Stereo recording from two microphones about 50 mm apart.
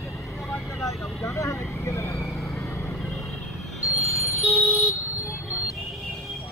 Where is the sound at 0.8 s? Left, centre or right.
Left.